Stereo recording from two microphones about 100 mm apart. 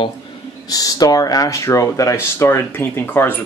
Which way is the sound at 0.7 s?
40° left (ahead or behind).